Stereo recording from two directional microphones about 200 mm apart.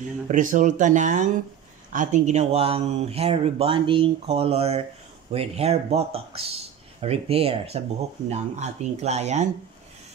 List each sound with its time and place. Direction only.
0.3 s speech: 40° right (ahead or behind)